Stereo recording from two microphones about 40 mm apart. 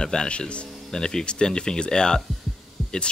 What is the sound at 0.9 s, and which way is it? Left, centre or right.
Speech, centre.